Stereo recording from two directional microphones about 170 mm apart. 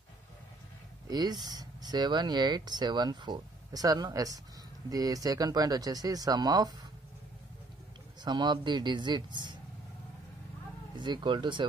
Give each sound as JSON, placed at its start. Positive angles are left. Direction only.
{"t": 1.0, "sound": "speech", "side_deg": -25}
{"t": 8.2, "sound": "speech", "side_deg": -25}
{"t": 11.0, "sound": "speech", "side_deg": -25}